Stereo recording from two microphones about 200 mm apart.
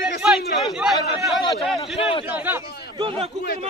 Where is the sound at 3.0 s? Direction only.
30° right (ahead or behind).